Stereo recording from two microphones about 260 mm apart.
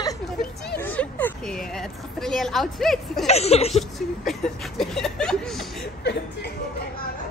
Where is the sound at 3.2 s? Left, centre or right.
Left.